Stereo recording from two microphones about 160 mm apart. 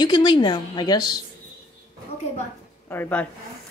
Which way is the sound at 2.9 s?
10° left (ahead or behind).